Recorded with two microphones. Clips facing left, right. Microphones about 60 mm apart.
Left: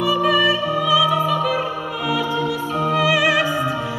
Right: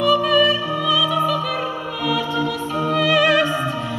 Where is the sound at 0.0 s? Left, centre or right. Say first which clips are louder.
Right 1 dB; centre.